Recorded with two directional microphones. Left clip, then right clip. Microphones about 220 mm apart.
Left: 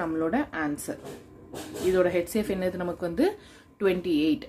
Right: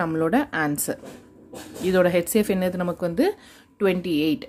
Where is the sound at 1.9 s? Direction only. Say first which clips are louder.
Right 6 dB; 40° right (ahead or behind).